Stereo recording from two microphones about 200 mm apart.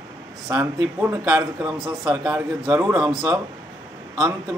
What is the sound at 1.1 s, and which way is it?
A man's voice, 15° right (ahead or behind).